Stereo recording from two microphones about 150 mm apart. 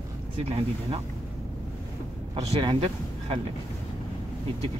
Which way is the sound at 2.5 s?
35° right (ahead or behind).